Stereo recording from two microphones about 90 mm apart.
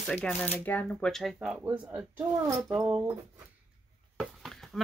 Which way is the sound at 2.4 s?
40° right (ahead or behind).